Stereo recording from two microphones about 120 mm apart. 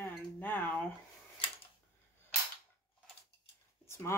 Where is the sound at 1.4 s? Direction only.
50° left (ahead or behind).